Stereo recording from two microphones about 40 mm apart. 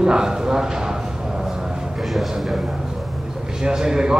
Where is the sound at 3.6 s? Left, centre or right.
Centre.